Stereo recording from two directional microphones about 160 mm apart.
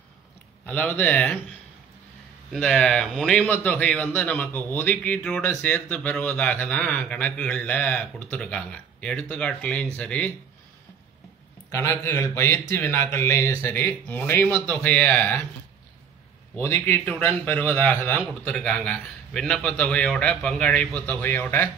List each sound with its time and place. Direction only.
0.7 s a man's voice: 10° left (ahead or behind)
2.5 s a man's voice: 5° left (ahead or behind)
11.7 s a man's voice: 20° left (ahead or behind)
16.5 s a man's voice: 15° left (ahead or behind)